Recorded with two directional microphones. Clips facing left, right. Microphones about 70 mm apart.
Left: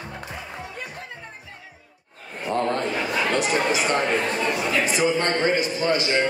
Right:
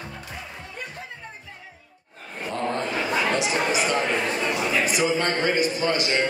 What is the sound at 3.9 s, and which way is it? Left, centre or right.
Chatter, left.